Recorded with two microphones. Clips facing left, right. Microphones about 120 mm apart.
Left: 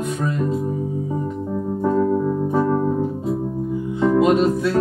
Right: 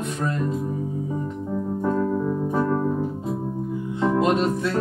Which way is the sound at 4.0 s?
Centre (ahead or behind).